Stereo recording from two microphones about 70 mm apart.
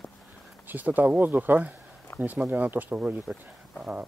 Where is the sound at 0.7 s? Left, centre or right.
Right.